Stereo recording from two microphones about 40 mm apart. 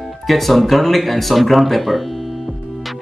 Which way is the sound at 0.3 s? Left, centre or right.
Centre.